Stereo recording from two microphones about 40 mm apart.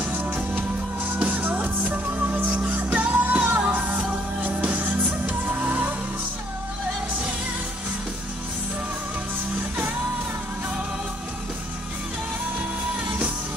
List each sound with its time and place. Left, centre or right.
0.0 s music: right
12.5 s music: right